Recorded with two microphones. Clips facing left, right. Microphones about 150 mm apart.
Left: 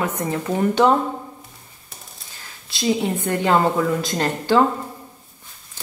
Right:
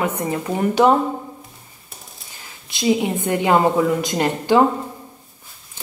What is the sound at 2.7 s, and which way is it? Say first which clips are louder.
A woman's voice: right 2 dB; 20° right (ahead or behind).